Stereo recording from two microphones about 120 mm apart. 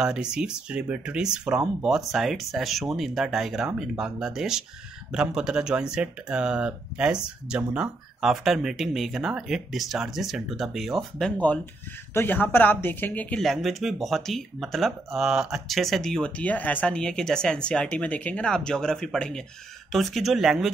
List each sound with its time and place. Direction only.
0.0 s speech: 5° right (ahead or behind); by 13.4 s 15° left (ahead or behind)
13.4 s speech: centre (ahead or behind)